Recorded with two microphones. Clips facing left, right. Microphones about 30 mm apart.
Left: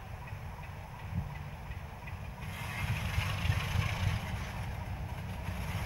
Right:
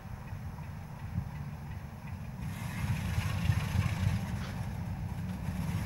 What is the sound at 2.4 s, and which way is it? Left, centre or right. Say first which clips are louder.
Vehicle: left 1 dB; left.